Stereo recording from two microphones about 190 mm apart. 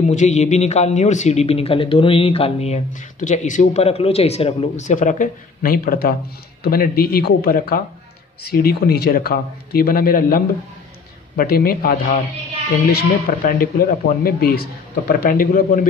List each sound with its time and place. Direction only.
0.1 s a man's voice: 40° left (ahead or behind)